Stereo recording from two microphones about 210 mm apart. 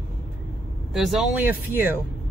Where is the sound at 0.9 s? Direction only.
Centre (ahead or behind).